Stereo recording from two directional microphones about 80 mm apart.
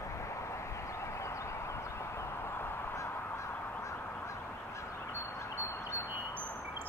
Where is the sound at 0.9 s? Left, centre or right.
Left.